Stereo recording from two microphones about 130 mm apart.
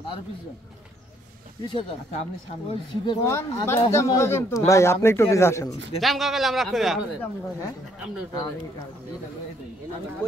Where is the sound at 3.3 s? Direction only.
20° left (ahead or behind).